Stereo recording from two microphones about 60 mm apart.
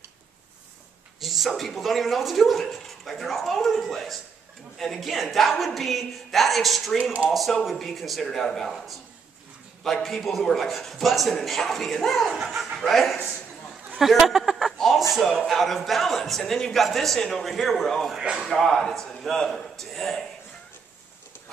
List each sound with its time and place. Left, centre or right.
1.2 s a man's voice: centre
7.0 s speech: centre
7.2 s a man's voice: centre
14.2 s a man's voice: centre
18.1 s speech: centre
18.5 s a man's voice: centre